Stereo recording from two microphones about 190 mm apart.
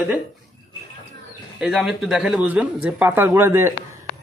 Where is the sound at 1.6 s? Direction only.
Centre (ahead or behind).